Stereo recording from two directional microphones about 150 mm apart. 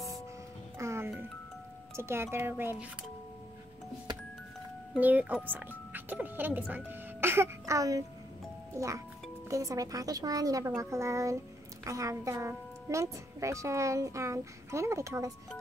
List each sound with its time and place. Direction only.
0.7 s music: 20° right (ahead or behind)
2.0 s speech: 15° right (ahead or behind)
4.9 s a woman's voice: 10° right (ahead or behind)